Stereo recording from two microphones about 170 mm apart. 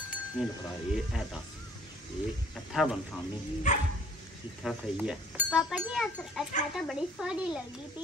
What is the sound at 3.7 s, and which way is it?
Dog, 45° left (ahead or behind).